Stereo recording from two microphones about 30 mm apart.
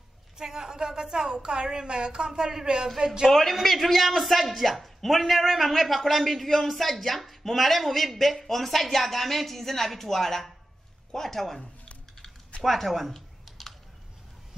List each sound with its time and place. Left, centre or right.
0.4 s a woman's voice: centre
3.3 s speech: centre
12.6 s speech: centre
13.5 s typing: centre